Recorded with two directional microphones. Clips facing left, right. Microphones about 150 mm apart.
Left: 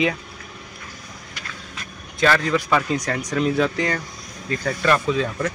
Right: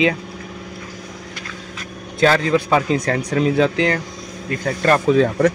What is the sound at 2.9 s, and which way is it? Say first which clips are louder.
Speech: right 5 dB; 55° right (ahead or behind).